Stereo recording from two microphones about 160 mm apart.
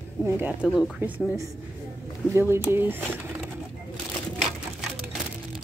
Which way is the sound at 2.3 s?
15° right (ahead or behind).